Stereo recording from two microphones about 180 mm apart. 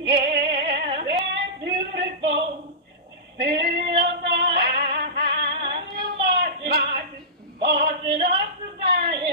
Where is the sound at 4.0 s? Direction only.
65° right (ahead or behind).